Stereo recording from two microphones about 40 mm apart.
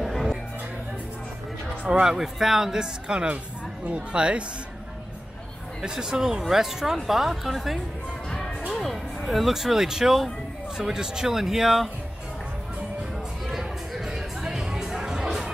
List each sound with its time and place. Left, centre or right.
0.0 s music: centre
1.9 s speech: right
2.1 s speech: centre; by 4.5 s right
5.8 s speech: centre
13.5 s music: centre